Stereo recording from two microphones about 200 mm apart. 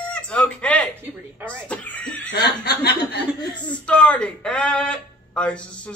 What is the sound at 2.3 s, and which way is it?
Speech, 55° left (ahead or behind).